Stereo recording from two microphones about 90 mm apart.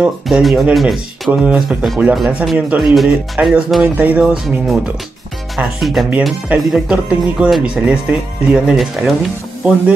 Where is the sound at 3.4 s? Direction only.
20° right (ahead or behind).